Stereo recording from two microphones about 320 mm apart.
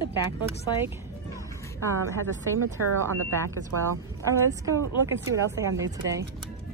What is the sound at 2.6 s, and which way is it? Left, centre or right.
Speech, right.